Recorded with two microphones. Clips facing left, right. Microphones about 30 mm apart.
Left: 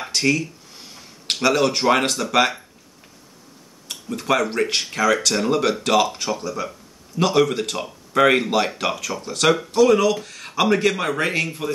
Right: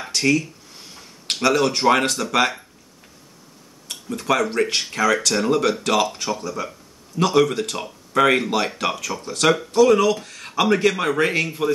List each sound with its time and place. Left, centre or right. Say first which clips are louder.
0.0 s a sound: right 1 dB; centre
1.3 s speech: even; centre
3.9 s speech: even; centre
7.2 s speech: even; centre